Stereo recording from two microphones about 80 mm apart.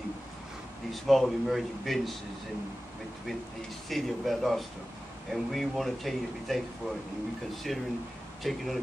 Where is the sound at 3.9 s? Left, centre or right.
Centre.